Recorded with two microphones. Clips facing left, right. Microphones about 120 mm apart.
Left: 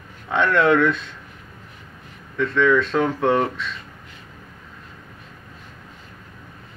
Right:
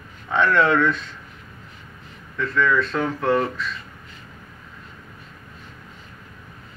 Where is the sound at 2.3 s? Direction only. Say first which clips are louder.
Left 3 dB; 65° left (ahead or behind).